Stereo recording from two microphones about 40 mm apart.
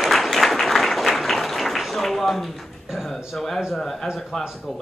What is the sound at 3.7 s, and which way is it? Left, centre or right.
Speech, centre.